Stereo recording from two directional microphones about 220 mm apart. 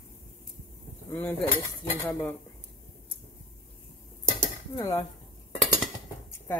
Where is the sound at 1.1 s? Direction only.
10° left (ahead or behind).